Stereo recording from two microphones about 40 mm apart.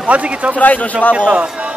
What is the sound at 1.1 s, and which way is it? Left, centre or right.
Speech, right.